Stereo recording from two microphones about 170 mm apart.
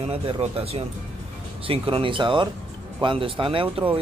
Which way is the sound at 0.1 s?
35° right (ahead or behind).